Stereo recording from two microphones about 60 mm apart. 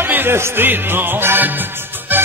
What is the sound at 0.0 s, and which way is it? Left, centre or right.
Music, right.